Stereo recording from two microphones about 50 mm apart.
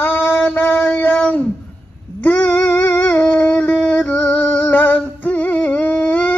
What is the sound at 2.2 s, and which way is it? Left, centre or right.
Music, left.